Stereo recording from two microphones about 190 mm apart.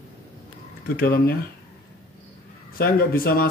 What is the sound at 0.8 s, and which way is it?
Speech, 50° left (ahead or behind).